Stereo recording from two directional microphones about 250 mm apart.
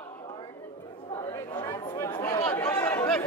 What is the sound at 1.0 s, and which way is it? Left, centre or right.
Chatter, centre.